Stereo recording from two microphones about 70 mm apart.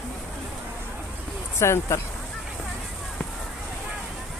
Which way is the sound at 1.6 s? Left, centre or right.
Left.